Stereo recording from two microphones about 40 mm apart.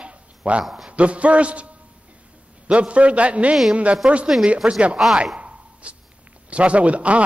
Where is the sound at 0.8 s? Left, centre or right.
Right.